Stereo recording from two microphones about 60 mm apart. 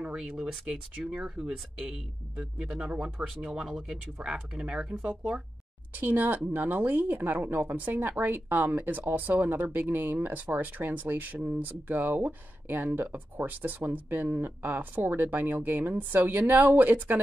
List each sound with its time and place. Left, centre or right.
0.0 s speech: centre
5.9 s speech: right